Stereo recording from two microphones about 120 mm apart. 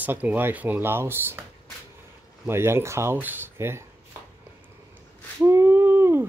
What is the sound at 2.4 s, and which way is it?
Speech, 20° right (ahead or behind).